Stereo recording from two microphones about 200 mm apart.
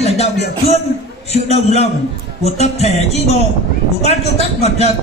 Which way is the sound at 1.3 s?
30° left (ahead or behind).